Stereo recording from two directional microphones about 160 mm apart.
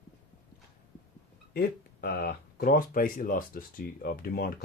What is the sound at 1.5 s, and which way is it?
Speech, 70° left (ahead or behind).